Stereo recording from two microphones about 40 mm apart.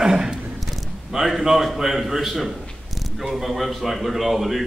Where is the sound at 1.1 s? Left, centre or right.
Centre.